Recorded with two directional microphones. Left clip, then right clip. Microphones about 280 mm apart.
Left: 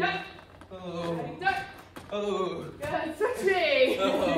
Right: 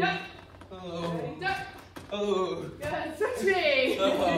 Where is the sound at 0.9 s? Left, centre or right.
Centre.